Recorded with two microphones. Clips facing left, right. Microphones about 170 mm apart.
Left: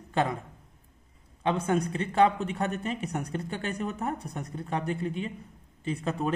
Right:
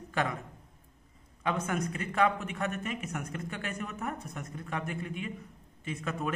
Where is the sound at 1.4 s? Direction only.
30° left (ahead or behind).